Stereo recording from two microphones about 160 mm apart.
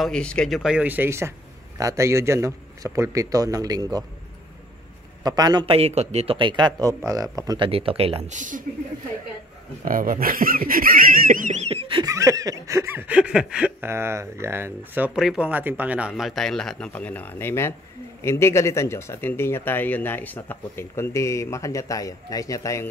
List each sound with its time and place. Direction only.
0.0 s a man's voice: 5° left (ahead or behind); by 4.0 s 25° right (ahead or behind)
5.2 s a man's voice: 25° right (ahead or behind); by 8.6 s 55° right (ahead or behind)
9.8 s speech: 60° right (ahead or behind); by 16.1 s 10° right (ahead or behind)
16.2 s speech: centre (ahead or behind); by 22.8 s 20° left (ahead or behind)